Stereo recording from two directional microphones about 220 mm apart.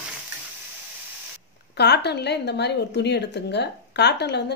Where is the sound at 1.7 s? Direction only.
50° left (ahead or behind).